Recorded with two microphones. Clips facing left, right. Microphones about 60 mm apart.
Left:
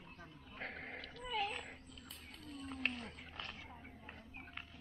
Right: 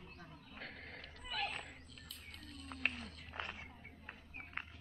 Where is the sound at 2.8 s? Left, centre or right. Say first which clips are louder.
Right 1 dB; centre.